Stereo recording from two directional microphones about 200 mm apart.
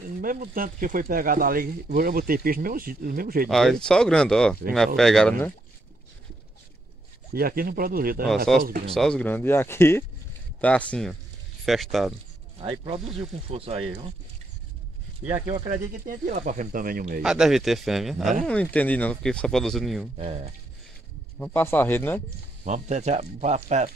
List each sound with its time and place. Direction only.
0.2 s speech: 45° right (ahead or behind)
3.4 s speech: centre (ahead or behind)
7.3 s speech: 45° right (ahead or behind)
8.5 s speech: centre (ahead or behind)
12.9 s speech: 30° right (ahead or behind)
15.2 s speech: 15° right (ahead or behind)
15.7 s speech: 40° right (ahead or behind)
17.2 s speech: 5° right (ahead or behind)
20.2 s speech: 30° right (ahead or behind)
21.4 s speech: 10° left (ahead or behind)
22.7 s speech: 35° right (ahead or behind)